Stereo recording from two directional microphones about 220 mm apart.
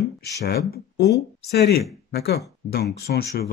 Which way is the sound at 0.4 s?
45° left (ahead or behind).